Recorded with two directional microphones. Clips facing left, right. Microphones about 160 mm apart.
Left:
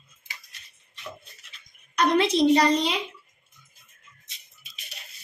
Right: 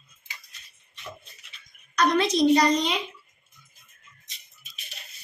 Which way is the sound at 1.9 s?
30° left (ahead or behind).